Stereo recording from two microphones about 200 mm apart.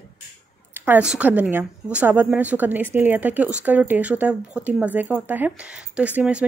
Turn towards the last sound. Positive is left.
turn(degrees=-5)  # may be behind; listen again after turning